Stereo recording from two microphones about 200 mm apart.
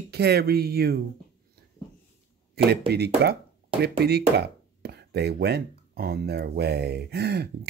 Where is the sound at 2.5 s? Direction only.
55° right (ahead or behind).